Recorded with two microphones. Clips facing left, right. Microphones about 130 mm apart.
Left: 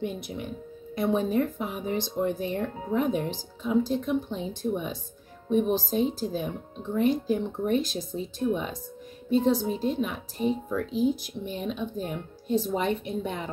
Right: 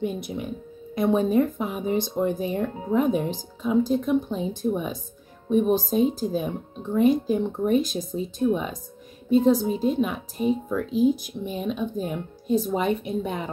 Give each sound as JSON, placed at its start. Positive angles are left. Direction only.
{"t": 0.0, "sound": "speech", "side_deg": -15}